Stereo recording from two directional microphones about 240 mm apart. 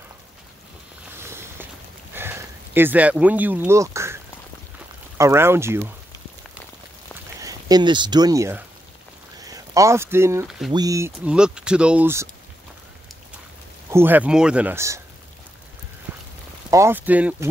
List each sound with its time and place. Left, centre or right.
1.1 s a sound: centre
2.1 s speech: centre
7.3 s speech: centre
13.8 s speech: centre
16.1 s a sound: centre
16.7 s speech: centre